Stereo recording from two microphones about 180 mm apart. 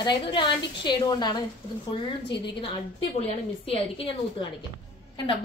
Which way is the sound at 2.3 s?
75° left (ahead or behind).